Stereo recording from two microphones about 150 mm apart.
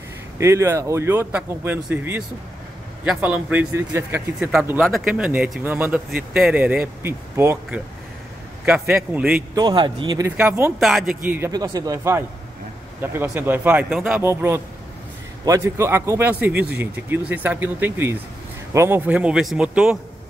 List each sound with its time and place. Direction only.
0.4 s speech: 20° right (ahead or behind)
4.4 s speech: 5° right (ahead or behind)
9.6 s speech: 30° right (ahead or behind)
10.2 s speech: 15° right (ahead or behind)
10.8 s speech: centre (ahead or behind)
11.2 s speech: 15° right (ahead or behind)
14.2 s speech: 15° right (ahead or behind)